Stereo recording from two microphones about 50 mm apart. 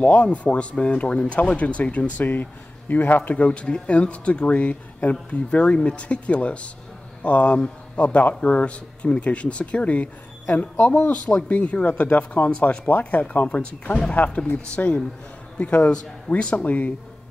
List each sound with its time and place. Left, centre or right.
0.0 s speech: left
2.9 s speech: left
3.2 s speech: left
13.6 s speech: left
14.1 s speech: left
16.5 s speech: left